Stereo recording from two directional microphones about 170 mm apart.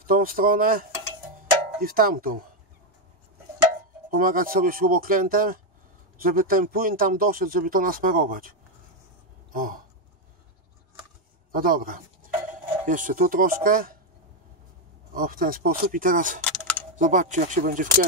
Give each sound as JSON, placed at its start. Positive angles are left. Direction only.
{"t": 0.0, "sound": "speech", "side_deg": -55}
{"t": 4.1, "sound": "speech", "side_deg": -55}
{"t": 9.5, "sound": "a sound", "side_deg": -55}
{"t": 11.5, "sound": "speech", "side_deg": -55}
{"t": 15.1, "sound": "speech", "side_deg": -55}
{"t": 16.3, "sound": "keys jangling", "side_deg": 5}
{"t": 16.9, "sound": "speech", "side_deg": -45}